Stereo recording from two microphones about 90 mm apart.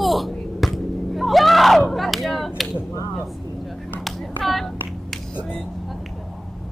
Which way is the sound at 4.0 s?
5° left (ahead or behind).